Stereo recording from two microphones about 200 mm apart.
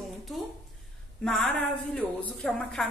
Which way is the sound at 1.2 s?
5° left (ahead or behind).